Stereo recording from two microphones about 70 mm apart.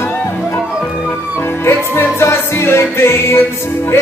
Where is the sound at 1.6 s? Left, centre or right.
Left.